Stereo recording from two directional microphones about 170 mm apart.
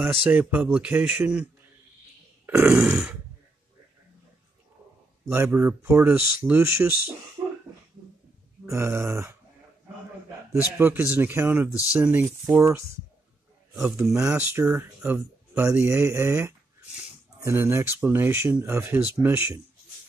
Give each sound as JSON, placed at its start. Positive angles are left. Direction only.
{"t": 0.0, "sound": "speech", "side_deg": -10}
{"t": 2.4, "sound": "grunt", "side_deg": -15}
{"t": 2.7, "sound": "burping", "side_deg": -5}
{"t": 5.3, "sound": "speech", "side_deg": -15}
{"t": 8.6, "sound": "speech", "side_deg": -15}
{"t": 10.8, "sound": "speech", "side_deg": -15}
{"t": 13.7, "sound": "speech", "side_deg": -15}